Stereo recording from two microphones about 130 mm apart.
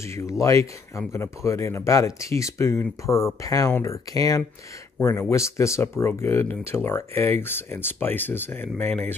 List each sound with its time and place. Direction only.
0.0 s speech: 20° left (ahead or behind)